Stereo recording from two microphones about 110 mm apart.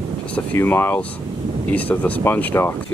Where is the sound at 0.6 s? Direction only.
20° left (ahead or behind).